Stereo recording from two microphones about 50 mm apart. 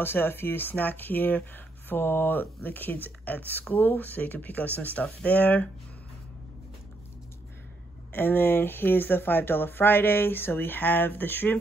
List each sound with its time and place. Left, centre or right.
0.0 s speech: left
8.1 s speech: left